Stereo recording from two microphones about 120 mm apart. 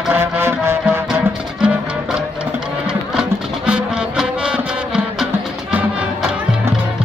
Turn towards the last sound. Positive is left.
turn(degrees=-10)  # may be behind; listen again after turning